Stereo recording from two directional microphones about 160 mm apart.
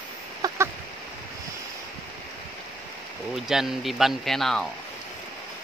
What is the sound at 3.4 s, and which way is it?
Speech, 5° right (ahead or behind).